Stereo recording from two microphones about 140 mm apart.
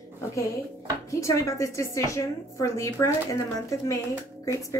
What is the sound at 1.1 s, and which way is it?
A woman's voice, 20° left (ahead or behind).